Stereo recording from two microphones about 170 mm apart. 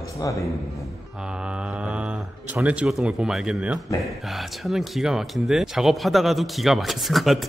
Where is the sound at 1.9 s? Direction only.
5° right (ahead or behind).